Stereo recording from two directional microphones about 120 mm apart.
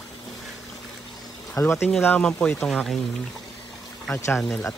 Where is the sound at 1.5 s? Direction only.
20° left (ahead or behind); by 3.0 s centre (ahead or behind).